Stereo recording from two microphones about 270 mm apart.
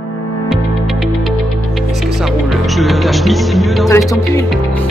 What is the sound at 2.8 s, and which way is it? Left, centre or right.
Speech, centre.